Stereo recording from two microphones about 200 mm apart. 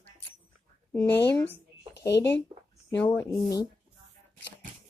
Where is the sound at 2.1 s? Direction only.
60° left (ahead or behind).